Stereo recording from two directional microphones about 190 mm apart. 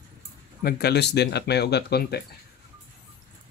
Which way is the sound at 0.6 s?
55° left (ahead or behind).